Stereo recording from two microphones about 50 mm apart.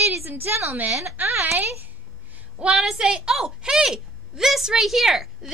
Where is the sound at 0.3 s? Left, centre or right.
Right.